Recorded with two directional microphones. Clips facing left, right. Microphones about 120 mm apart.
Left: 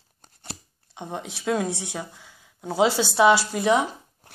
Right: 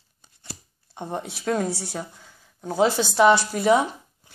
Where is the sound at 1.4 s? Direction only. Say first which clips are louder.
Even; 10° left (ahead or behind).